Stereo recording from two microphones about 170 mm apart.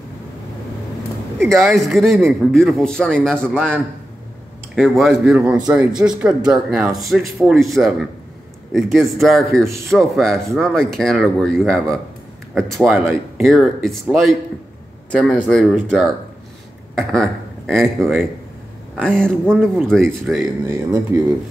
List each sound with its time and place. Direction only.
1.4 s speech: centre (ahead or behind)
3.5 s speech: 10° right (ahead or behind)
4.7 s speech: centre (ahead or behind)
20.6 s speech: 15° right (ahead or behind)